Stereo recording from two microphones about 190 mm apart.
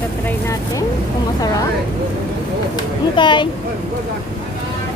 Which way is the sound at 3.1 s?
25° left (ahead or behind).